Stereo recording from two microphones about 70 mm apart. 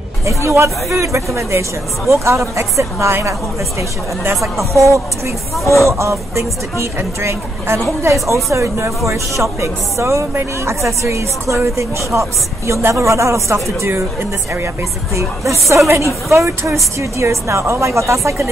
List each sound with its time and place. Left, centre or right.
0.2 s speech: right
4.7 s speech: right
15.1 s speech: right